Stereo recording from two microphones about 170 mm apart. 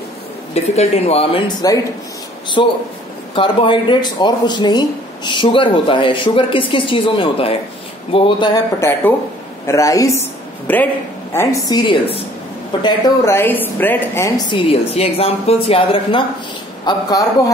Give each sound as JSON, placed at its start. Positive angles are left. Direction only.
{"t": 0.7, "sound": "speech", "side_deg": 35}
{"t": 1.6, "sound": "a woman's voice", "side_deg": 20}
{"t": 11.3, "sound": "speech", "side_deg": 20}